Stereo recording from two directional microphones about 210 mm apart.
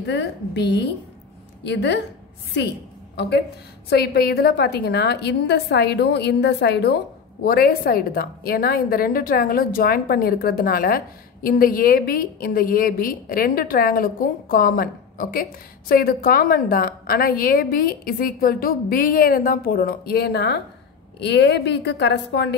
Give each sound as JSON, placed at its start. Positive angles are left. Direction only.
{"t": 0.0, "sound": "a woman's voice", "side_deg": 55}
{"t": 3.2, "sound": "a woman's voice", "side_deg": 50}